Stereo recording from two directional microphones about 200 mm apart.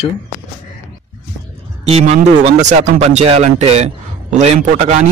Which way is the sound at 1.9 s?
30° right (ahead or behind).